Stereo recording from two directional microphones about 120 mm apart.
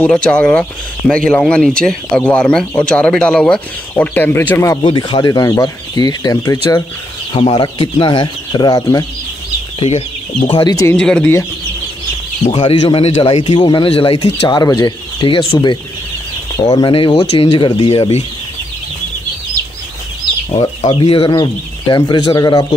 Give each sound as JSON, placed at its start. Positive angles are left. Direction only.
{"t": 0.0, "sound": "speech", "side_deg": 10}
{"t": 4.8, "sound": "speech", "side_deg": 40}
{"t": 7.3, "sound": "speech", "side_deg": 45}
{"t": 9.8, "sound": "speech", "side_deg": 70}
{"t": 10.5, "sound": "speech", "side_deg": 35}
{"t": 11.0, "sound": "speech", "side_deg": 5}
{"t": 12.5, "sound": "speech", "side_deg": 55}
{"t": 13.6, "sound": "speech", "side_deg": 40}
{"t": 14.6, "sound": "speech", "side_deg": 35}
{"t": 16.5, "sound": "speech", "side_deg": 35}
{"t": 16.9, "sound": "speech", "side_deg": 50}
{"t": 20.8, "sound": "speech", "side_deg": 50}
{"t": 21.4, "sound": "speech", "side_deg": 35}